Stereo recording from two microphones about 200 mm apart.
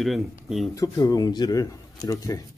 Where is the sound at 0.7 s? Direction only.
15° left (ahead or behind).